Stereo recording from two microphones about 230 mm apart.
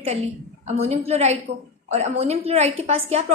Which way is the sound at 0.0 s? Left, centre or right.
Right.